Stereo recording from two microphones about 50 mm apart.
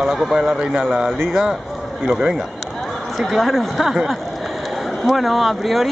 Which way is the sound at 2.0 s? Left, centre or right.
Centre.